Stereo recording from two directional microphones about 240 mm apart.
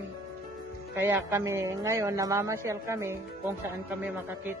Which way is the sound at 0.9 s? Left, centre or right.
Centre.